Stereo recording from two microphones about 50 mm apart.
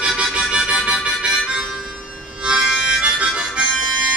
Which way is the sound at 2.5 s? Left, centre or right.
Centre.